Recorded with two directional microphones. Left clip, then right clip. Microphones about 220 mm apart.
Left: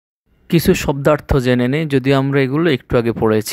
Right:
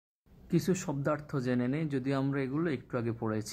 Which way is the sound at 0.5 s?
35° left (ahead or behind).